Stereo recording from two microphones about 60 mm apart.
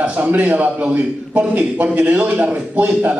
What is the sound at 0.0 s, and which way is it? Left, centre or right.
A man's voice, right.